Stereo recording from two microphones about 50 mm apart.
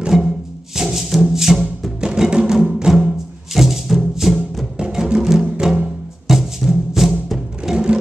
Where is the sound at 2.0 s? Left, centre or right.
Centre.